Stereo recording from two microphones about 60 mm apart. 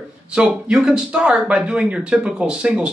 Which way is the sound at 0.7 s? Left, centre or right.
Centre.